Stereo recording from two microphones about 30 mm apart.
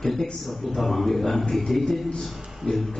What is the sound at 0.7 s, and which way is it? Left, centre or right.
Speech, centre.